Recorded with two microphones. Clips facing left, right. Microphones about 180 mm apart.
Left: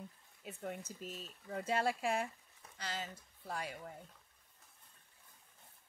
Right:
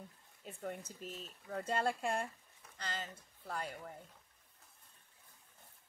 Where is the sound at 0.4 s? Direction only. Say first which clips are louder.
Even; 5° left (ahead or behind).